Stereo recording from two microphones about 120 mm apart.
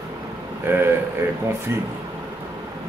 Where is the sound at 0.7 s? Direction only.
20° right (ahead or behind).